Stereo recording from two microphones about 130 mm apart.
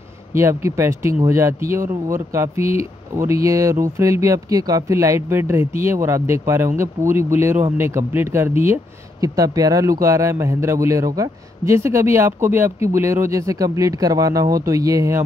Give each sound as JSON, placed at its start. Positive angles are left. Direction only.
{"t": 0.3, "sound": "speech", "side_deg": -20}